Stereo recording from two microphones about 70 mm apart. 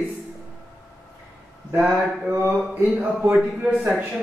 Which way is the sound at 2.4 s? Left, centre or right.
Centre.